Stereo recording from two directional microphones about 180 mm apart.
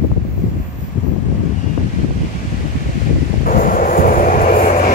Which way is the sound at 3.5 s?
50° left (ahead or behind).